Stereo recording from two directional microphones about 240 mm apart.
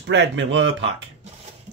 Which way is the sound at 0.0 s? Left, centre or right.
Right.